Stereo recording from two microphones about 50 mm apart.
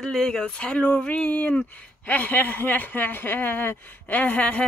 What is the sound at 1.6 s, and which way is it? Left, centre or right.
Speech, left.